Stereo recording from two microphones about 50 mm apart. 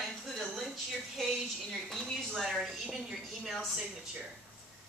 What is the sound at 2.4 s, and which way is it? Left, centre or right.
Speech, centre.